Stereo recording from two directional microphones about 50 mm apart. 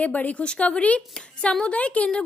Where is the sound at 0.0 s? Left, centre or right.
Left.